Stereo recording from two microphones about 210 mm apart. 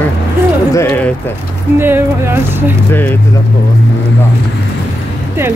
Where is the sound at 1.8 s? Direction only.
10° right (ahead or behind).